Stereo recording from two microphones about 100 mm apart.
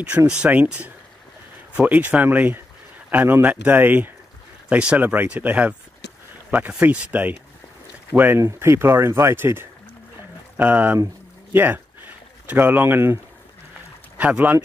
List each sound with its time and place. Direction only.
0.3 s speech: 10° right (ahead or behind)